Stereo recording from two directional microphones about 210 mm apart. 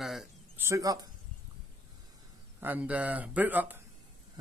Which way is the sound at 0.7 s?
15° right (ahead or behind).